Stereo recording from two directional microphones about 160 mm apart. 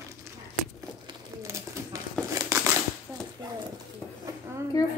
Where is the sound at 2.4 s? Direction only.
20° right (ahead or behind).